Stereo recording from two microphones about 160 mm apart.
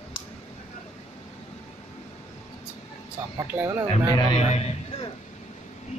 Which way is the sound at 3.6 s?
15° right (ahead or behind).